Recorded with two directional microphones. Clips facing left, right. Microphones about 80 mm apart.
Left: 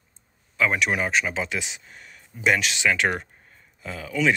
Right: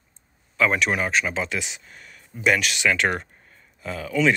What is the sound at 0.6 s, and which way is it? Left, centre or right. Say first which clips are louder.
Speech: right 1 dB; centre.